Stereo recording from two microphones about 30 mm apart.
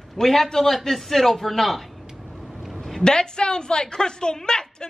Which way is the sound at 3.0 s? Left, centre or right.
Left.